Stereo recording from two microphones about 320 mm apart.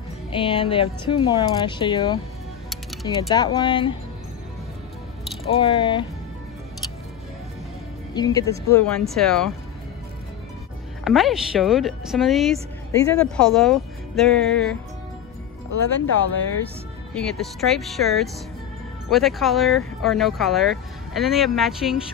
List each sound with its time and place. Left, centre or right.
0.3 s speech: centre
3.2 s speech: centre
5.5 s speech: centre
8.1 s speech: centre
11.1 s speech: centre
15.7 s speech: left
17.1 s speech: centre